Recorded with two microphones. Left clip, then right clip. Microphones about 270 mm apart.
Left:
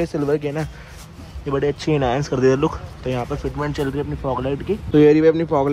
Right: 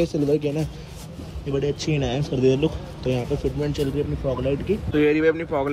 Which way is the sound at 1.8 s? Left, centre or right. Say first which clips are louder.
Left 6 dB; centre.